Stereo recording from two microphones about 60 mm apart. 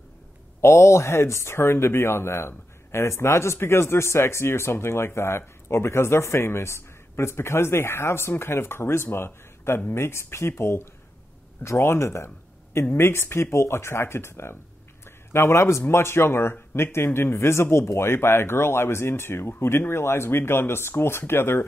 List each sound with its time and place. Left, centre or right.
0.6 s speech: left